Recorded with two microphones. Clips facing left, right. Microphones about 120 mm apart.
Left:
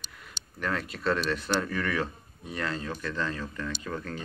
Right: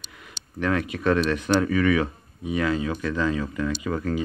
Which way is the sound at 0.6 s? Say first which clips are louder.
Right 7 dB; 70° right (ahead or behind).